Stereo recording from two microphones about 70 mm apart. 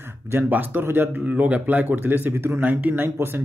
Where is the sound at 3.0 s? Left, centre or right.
Right.